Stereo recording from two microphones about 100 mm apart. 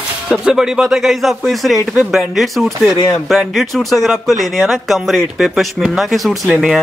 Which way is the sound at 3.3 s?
Centre (ahead or behind).